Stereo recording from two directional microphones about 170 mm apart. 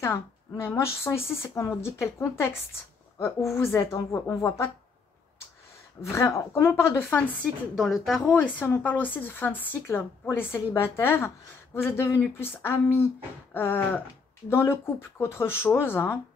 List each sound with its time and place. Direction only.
0.0 s a woman's voice: 15° left (ahead or behind)
6.0 s a woman's voice: 15° left (ahead or behind)
7.7 s a woman's voice: centre (ahead or behind)